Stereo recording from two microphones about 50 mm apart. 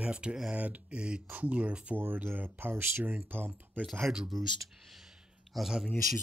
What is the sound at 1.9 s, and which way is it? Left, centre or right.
Speech, right.